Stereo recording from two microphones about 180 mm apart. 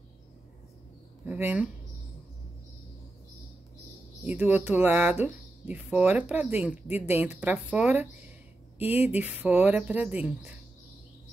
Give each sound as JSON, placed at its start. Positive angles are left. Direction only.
{"t": 1.2, "sound": "speech", "side_deg": -10}
{"t": 4.2, "sound": "speech", "side_deg": -10}